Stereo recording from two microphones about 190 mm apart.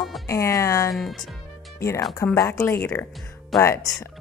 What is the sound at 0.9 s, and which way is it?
Speech, centre (ahead or behind).